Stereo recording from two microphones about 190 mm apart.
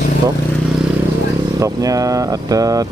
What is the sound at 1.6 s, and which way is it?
Speech, 20° right (ahead or behind).